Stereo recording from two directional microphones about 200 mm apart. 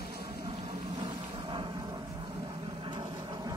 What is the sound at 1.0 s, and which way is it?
Vehicle, 25° right (ahead or behind).